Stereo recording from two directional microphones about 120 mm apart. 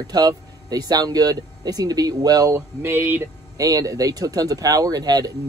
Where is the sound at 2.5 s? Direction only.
20° right (ahead or behind).